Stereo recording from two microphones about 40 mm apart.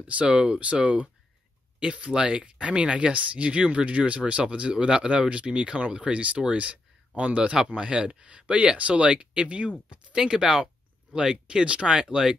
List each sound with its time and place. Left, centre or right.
0.0 s speech: right
4.8 s speech: centre
10.1 s speech: centre